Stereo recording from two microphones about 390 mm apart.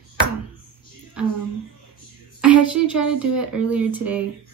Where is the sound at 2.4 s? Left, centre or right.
Centre.